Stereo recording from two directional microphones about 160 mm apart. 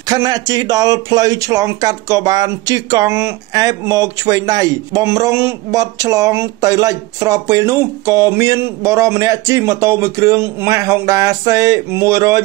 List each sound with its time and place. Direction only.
0.0 s speech: 25° right (ahead or behind)